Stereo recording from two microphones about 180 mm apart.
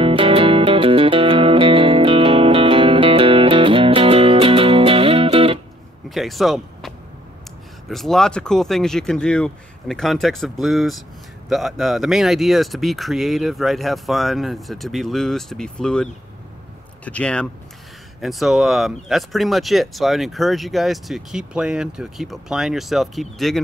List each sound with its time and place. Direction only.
0.0 s music: 30° right (ahead or behind)
6.0 s speech: centre (ahead or behind)
7.9 s speech: centre (ahead or behind)